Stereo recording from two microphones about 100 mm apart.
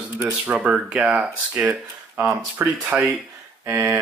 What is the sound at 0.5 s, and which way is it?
Speech, 10° right (ahead or behind).